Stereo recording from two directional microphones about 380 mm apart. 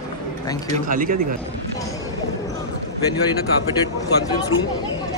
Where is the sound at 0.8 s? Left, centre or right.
Right.